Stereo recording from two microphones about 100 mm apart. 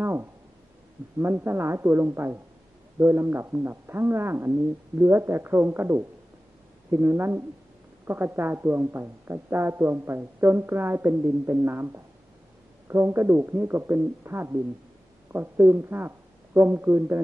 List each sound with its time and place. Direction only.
0.0 s speech: 25° right (ahead or behind)